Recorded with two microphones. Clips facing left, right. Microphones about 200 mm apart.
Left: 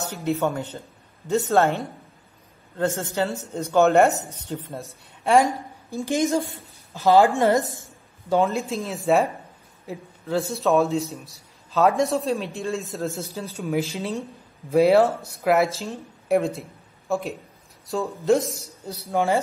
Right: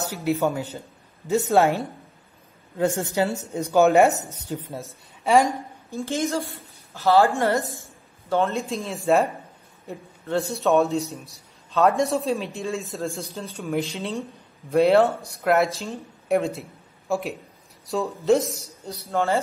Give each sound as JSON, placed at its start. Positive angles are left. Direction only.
{"t": 0.2, "sound": "a woman's voice", "side_deg": -5}
{"t": 0.7, "sound": "a sound", "side_deg": -5}
{"t": 2.8, "sound": "a woman's voice", "side_deg": -15}
{"t": 3.8, "sound": "a man's voice", "side_deg": 0}
{"t": 5.9, "sound": "a woman's voice", "side_deg": 15}
{"t": 8.5, "sound": "a man's voice", "side_deg": 0}
{"t": 19.0, "sound": "speech", "side_deg": 15}